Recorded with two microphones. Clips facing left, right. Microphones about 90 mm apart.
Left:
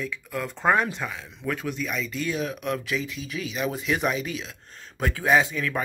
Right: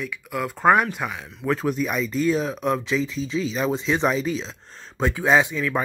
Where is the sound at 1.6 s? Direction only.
45° right (ahead or behind).